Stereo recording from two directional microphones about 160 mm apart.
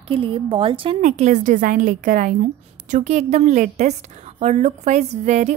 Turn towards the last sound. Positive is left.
turn(degrees=-45)  # may be behind; listen again after turning